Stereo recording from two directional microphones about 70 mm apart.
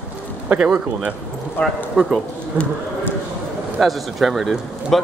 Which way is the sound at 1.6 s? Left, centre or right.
Left.